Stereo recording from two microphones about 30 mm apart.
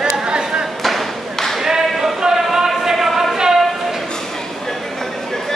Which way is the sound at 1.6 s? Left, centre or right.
Centre.